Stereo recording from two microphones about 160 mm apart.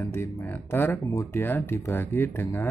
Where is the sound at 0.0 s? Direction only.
15° left (ahead or behind).